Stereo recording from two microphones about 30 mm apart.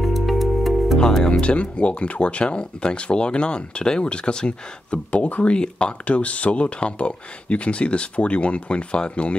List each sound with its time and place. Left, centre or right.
0.0 s music: centre
1.4 s speech: left
4.9 s speech: left
5.6 s speech: left
6.0 s speech: left